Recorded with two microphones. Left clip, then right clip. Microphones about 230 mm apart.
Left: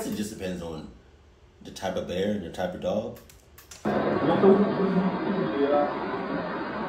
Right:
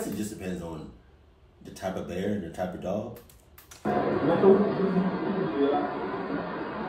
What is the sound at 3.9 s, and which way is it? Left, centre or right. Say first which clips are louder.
Speech: left 1 dB; centre.